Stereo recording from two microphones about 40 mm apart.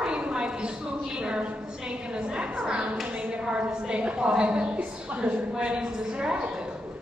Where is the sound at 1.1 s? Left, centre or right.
Right.